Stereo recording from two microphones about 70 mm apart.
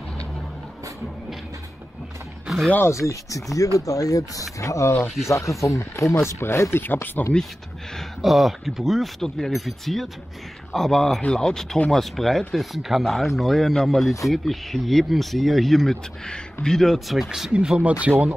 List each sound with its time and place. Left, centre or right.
2.4 s a sound: centre
2.9 s speech: left
8.2 s speech: centre